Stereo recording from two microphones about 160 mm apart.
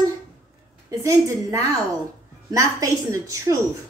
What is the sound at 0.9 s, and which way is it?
A woman's voice, 20° right (ahead or behind).